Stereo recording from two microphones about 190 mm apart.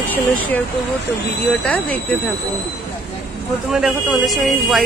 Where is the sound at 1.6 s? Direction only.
5° left (ahead or behind).